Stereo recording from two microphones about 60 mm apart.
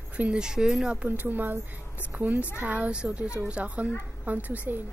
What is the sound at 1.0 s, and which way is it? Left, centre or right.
Speech, right.